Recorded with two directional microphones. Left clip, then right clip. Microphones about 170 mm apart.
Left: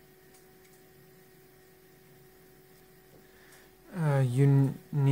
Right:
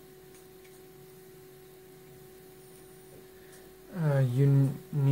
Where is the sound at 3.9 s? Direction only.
30° left (ahead or behind).